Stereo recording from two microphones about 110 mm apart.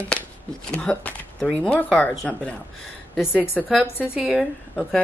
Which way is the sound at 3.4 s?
20° left (ahead or behind).